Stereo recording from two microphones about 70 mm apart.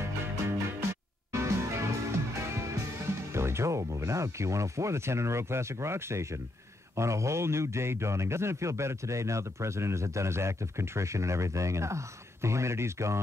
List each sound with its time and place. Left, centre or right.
0.0 s music: right
3.3 s a man's voice: right